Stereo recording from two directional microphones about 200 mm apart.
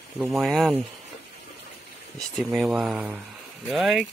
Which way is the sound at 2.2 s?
Centre (ahead or behind).